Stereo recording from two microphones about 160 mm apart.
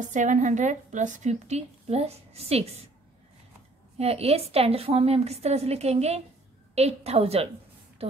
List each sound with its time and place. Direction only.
0.0 s a woman's voice: 50° right (ahead or behind)
4.0 s a woman's voice: 40° right (ahead or behind)